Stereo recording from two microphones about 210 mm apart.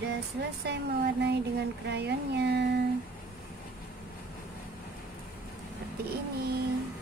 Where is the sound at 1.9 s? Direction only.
55° right (ahead or behind).